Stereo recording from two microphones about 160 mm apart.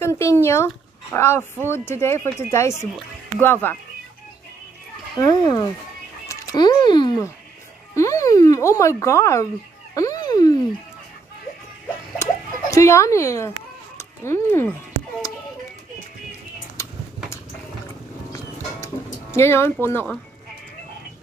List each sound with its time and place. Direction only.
0.0 s speech: 15° left (ahead or behind)
5.2 s speech: 25° left (ahead or behind)
12.2 s a sound: 20° left (ahead or behind)
13.9 s speech: 15° left (ahead or behind)
16.8 s vehicle: 15° left (ahead or behind)
19.3 s speech: 15° left (ahead or behind)